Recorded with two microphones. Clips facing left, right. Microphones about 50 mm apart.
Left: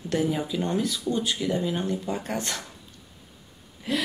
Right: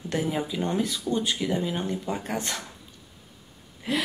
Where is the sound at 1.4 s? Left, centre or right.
Centre.